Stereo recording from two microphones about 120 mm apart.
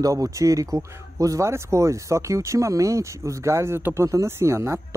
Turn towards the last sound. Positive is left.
turn(degrees=-20)  # may be behind; listen again after turning